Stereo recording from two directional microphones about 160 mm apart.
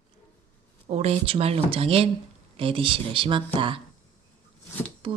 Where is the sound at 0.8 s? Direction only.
40° right (ahead or behind).